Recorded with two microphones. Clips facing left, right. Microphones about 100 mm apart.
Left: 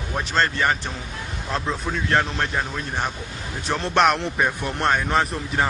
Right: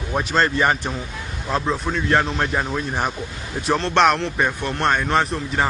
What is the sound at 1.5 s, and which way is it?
A man's voice, centre (ahead or behind).